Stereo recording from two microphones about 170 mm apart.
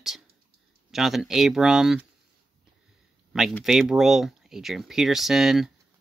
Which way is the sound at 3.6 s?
Centre (ahead or behind).